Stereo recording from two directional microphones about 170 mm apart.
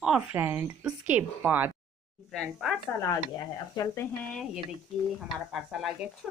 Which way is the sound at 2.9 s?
20° left (ahead or behind).